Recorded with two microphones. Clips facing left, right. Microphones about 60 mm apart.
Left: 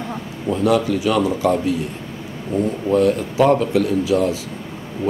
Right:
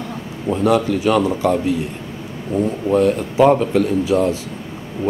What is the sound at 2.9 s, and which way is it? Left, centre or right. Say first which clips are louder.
Speech: even; centre.